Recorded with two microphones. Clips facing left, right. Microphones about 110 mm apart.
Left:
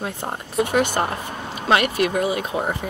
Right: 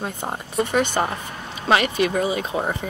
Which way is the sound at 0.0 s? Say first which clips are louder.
Even; centre (ahead or behind).